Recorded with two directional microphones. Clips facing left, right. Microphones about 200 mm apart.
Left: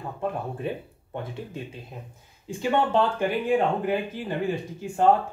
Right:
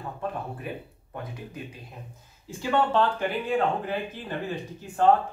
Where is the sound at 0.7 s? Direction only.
25° left (ahead or behind).